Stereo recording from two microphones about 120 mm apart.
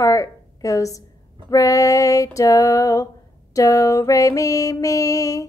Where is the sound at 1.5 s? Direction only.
25° left (ahead or behind).